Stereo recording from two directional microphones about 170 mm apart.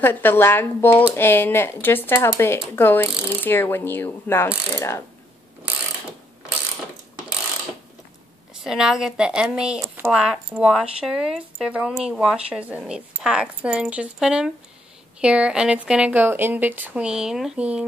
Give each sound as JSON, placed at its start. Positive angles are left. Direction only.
{"t": 0.0, "sound": "speech", "side_deg": 10}
{"t": 8.6, "sound": "speech", "side_deg": -5}